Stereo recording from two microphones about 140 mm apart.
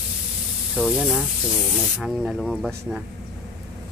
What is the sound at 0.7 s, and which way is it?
Speech, 5° right (ahead or behind).